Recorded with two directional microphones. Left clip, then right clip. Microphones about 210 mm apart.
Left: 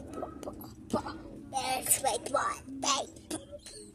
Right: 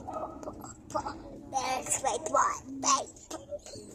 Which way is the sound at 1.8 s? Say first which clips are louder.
Even; 15° left (ahead or behind).